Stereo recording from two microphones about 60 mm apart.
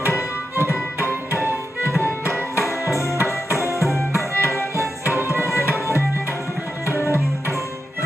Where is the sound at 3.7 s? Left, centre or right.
Left.